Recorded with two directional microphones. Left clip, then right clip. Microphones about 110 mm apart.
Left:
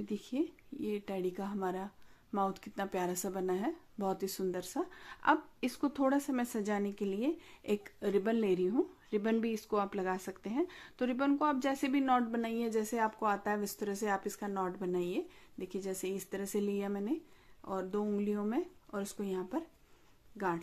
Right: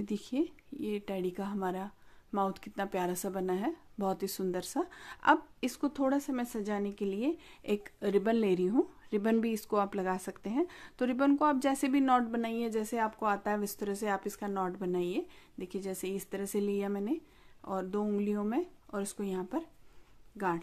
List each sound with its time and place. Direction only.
0.0 s speech: 35° right (ahead or behind)
5.8 s speech: 10° right (ahead or behind); by 20.6 s 25° right (ahead or behind)